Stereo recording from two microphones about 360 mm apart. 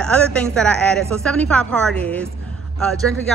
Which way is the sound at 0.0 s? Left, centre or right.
Centre.